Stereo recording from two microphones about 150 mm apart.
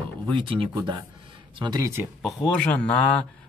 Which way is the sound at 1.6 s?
25° right (ahead or behind).